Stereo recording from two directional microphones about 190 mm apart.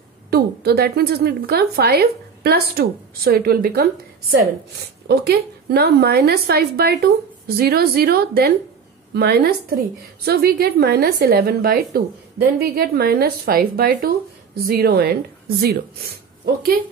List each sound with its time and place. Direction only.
0.3 s a woman's voice: 55° right (ahead or behind)